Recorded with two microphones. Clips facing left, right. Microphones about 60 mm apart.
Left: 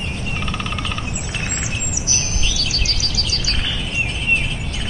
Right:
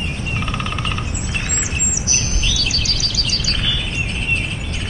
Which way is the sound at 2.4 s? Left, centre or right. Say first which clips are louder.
Right 2 dB; left.